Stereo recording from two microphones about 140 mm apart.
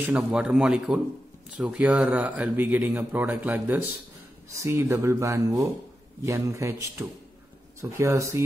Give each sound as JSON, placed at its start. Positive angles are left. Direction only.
{"t": 0.0, "sound": "speech", "side_deg": -10}